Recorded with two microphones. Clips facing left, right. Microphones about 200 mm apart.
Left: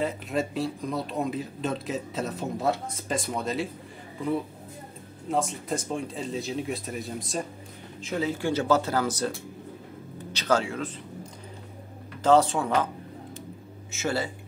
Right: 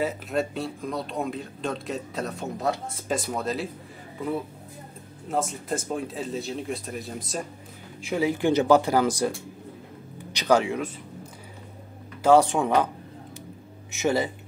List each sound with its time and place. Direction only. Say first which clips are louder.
0.0 s speech: right 1 dB; centre (ahead or behind)
5.3 s speech: even; centre (ahead or behind)
8.0 s speech: right 4 dB; 10° right (ahead or behind)
10.3 s speech: right 4 dB; 15° right (ahead or behind)
12.2 s speech: right 2 dB; 10° right (ahead or behind)
13.9 s speech: right 5 dB; 15° right (ahead or behind)